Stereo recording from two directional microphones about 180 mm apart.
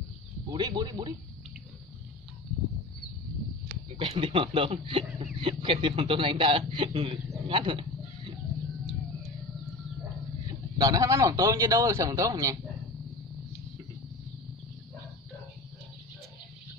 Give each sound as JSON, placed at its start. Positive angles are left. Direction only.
{"t": 0.5, "sound": "a man's voice", "side_deg": -25}
{"t": 4.0, "sound": "a man's voice", "side_deg": -30}
{"t": 10.8, "sound": "a man's voice", "side_deg": -20}